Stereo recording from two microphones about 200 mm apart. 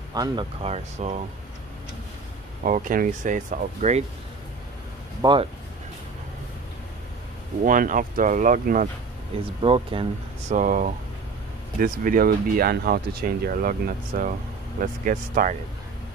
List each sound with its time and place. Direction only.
0.1 s speech: 20° right (ahead or behind)
2.6 s speech: 40° right (ahead or behind)
5.2 s speech: 25° right (ahead or behind)
7.6 s speech: 45° right (ahead or behind)
9.4 s speech: 25° right (ahead or behind)
10.5 s speech: 40° right (ahead or behind)